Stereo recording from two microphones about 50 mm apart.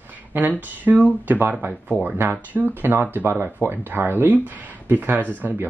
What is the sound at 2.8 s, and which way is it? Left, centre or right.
Speech, right.